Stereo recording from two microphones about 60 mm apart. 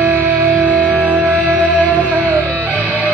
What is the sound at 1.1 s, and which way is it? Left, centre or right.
Music, right.